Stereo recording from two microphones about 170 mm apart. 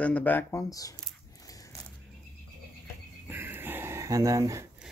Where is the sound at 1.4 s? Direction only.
20° left (ahead or behind).